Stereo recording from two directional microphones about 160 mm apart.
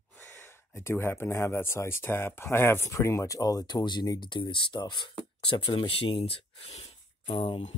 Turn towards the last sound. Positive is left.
turn(degrees=30)  # may be behind; listen again after turning